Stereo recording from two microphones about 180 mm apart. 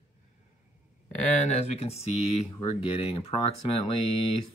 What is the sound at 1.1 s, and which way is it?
Speech, 40° left (ahead or behind).